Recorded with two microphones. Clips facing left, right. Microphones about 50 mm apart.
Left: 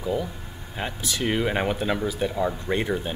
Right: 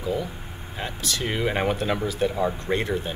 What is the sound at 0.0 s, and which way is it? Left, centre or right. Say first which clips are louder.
Speech: even; centre.